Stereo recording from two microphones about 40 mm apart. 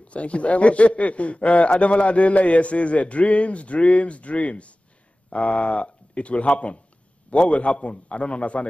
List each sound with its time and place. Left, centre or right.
0.1 s a man's voice: left